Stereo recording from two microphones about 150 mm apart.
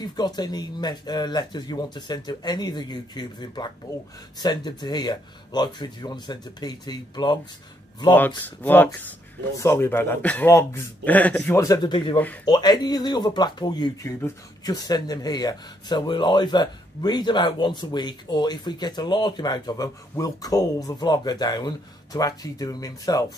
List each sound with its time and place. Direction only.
0.0 s speech: 30° left (ahead or behind)
8.6 s a man's voice: 10° left (ahead or behind)
11.6 s speech: 25° left (ahead or behind)